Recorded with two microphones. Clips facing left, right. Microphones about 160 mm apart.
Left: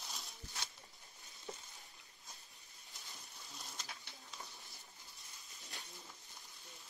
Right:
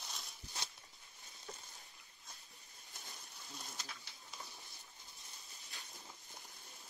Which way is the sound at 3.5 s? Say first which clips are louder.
Right 2 dB; centre (ahead or behind).